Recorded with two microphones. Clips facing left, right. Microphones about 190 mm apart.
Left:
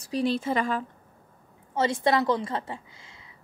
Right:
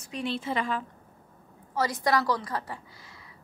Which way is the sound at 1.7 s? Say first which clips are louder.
Left 3 dB; 25° left (ahead or behind).